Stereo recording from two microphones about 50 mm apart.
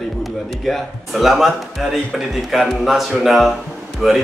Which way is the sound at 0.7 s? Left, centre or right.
Centre.